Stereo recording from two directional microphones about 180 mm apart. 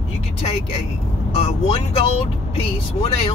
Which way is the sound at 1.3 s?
35° left (ahead or behind).